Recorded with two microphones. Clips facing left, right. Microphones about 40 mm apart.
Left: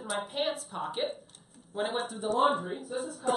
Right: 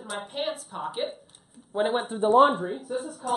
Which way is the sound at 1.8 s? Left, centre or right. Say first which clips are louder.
Right 7 dB; right.